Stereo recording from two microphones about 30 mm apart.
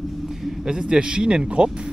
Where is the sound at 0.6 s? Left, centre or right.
Centre.